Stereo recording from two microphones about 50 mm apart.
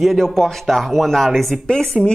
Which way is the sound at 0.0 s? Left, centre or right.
Centre.